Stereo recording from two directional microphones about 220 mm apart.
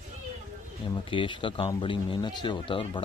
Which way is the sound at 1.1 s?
20° left (ahead or behind).